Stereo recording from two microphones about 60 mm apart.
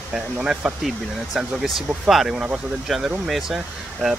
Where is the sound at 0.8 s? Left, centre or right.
Centre.